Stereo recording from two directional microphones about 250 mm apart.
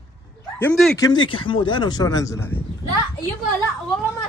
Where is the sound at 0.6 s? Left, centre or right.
Centre.